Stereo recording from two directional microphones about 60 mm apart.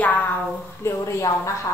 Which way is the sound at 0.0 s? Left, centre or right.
Left.